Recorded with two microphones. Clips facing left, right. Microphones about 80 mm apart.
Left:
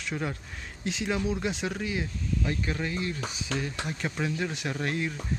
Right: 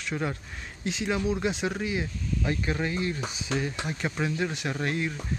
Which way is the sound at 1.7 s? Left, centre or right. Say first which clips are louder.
Right 2 dB; centre.